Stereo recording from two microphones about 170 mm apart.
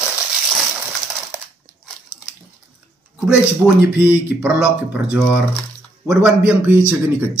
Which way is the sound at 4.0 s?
10° right (ahead or behind).